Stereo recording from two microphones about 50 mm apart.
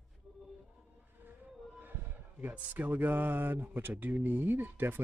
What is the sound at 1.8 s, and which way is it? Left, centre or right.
Speech, right.